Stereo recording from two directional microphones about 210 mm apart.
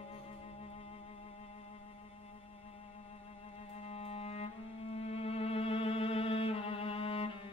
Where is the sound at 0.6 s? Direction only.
30° left (ahead or behind).